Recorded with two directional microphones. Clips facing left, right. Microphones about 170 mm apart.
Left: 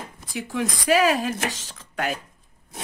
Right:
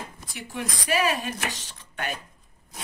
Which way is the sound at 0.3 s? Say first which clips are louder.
Left 7 dB; 90° left.